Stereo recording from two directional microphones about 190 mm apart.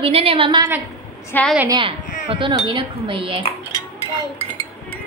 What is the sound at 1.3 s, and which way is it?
Speech, 5° left (ahead or behind).